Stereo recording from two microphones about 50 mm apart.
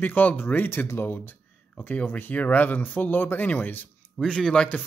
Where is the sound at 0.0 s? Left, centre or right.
Left.